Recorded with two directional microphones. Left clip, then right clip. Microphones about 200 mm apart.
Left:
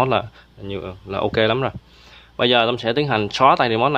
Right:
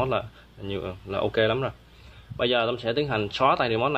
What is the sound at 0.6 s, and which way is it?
Speech, 15° left (ahead or behind).